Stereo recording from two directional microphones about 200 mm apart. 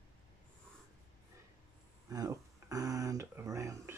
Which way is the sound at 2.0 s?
15° right (ahead or behind).